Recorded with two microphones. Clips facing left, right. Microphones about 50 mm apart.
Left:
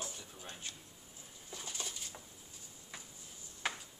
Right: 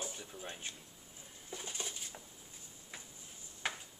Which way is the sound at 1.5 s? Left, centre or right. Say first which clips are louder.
Right 1 dB; centre.